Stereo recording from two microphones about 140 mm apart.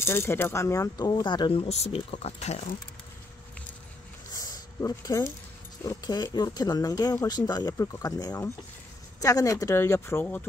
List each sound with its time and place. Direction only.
0.0 s speech: 15° left (ahead or behind); by 2.6 s 50° left (ahead or behind)
4.3 s a sound: 25° left (ahead or behind)
5.9 s speech: 25° left (ahead or behind)